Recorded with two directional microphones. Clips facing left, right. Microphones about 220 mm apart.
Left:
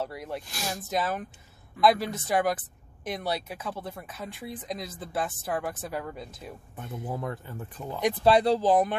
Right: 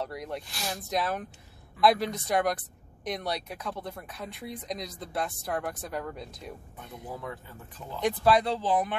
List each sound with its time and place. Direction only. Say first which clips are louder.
0.0 s speech: left 1 dB; 5° left (ahead or behind)
7.1 s speech: left 4 dB; 50° left (ahead or behind)
8.2 s speech: left 4 dB; 30° left (ahead or behind)